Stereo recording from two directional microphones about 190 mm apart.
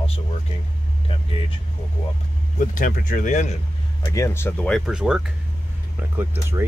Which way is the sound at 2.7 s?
45° left (ahead or behind).